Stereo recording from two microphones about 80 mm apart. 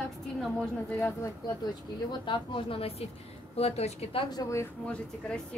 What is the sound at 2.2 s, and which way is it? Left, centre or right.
Speech, left.